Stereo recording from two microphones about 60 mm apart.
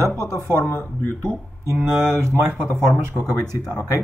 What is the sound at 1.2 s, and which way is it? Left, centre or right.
Speech, right.